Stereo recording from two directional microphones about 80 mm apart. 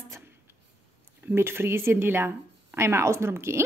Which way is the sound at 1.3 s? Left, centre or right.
Right.